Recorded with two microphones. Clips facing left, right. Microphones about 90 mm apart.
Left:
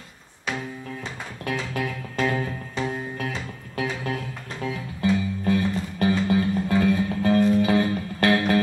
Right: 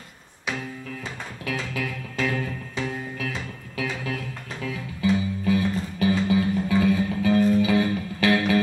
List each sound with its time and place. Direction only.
1.4 s music: 45° left (ahead or behind)
3.7 s music: 40° left (ahead or behind)